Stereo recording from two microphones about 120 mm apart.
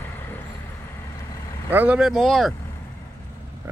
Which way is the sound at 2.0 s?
Centre (ahead or behind).